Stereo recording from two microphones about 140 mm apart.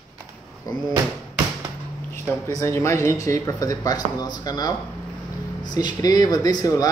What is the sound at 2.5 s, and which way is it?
Speech, 20° left (ahead or behind).